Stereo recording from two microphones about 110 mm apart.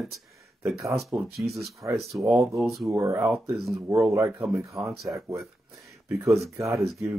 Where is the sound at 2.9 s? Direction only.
30° right (ahead or behind).